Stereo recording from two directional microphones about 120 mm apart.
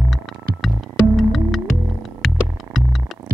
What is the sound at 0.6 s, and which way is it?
Music, centre (ahead or behind).